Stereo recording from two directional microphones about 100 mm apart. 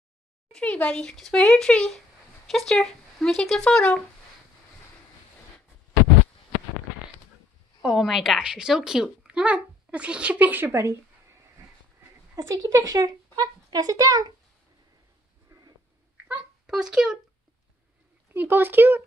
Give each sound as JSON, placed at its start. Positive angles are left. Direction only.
{"t": 0.5, "sound": "speech", "side_deg": 10}
{"t": 7.8, "sound": "a child's voice", "side_deg": -5}
{"t": 12.4, "sound": "speech", "side_deg": -35}
{"t": 15.5, "sound": "a sound", "side_deg": -30}
{"t": 16.6, "sound": "a child's voice", "side_deg": -5}
{"t": 18.3, "sound": "speech", "side_deg": -20}